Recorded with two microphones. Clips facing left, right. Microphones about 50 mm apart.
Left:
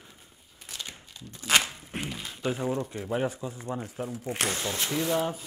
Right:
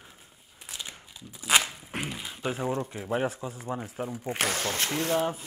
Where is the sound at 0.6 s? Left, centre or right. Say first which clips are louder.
Even; centre.